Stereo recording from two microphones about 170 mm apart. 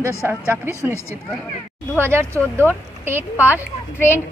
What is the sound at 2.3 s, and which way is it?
Speech, 10° left (ahead or behind).